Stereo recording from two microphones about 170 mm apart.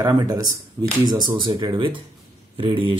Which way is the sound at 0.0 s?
25° right (ahead or behind).